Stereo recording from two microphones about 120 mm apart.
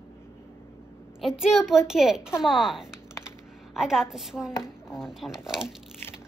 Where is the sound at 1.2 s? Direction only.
5° right (ahead or behind).